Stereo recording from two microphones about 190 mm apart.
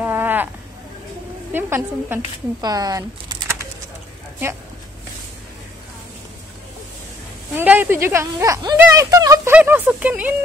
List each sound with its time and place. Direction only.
0.0 s a sound: 10° right (ahead or behind)
1.5 s speech: 10° right (ahead or behind)
7.5 s speech: 10° right (ahead or behind)